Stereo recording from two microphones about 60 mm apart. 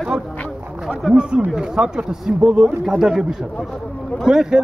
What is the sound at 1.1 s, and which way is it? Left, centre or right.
A man's voice, centre.